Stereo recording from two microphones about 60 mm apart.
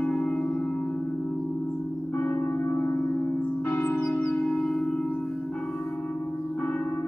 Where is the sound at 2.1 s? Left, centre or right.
Left.